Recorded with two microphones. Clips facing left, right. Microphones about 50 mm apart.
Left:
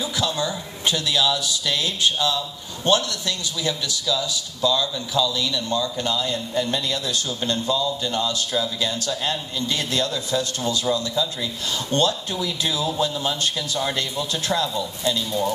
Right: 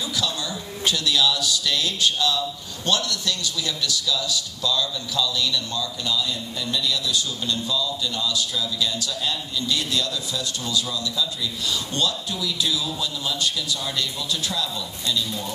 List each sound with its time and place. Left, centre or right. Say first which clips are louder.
0.2 s a man's voice: left 6 dB; left
6.1 s a man's voice: left 4 dB; left